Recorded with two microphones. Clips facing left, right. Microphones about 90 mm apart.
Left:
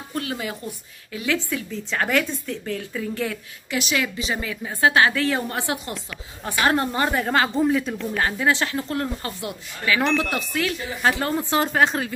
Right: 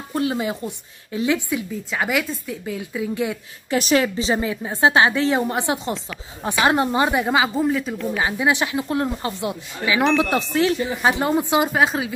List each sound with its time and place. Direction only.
0.1 s a woman's voice: 25° right (ahead or behind)
1.9 s a woman's voice: 5° right (ahead or behind)
3.7 s a woman's voice: 40° right (ahead or behind); by 10.0 s 20° right (ahead or behind)
10.0 s speech: centre (ahead or behind)
10.3 s a woman's voice: 25° right (ahead or behind); by 12.1 s 5° right (ahead or behind)